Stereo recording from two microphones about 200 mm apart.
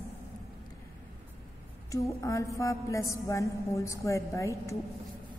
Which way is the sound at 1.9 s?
15° left (ahead or behind).